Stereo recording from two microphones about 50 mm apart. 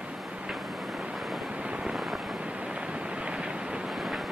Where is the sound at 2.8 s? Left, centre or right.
Right.